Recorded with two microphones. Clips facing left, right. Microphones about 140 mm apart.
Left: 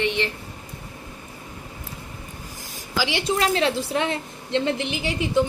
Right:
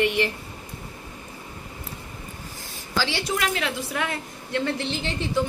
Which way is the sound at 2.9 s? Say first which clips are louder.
Left 1 dB; 15° left (ahead or behind).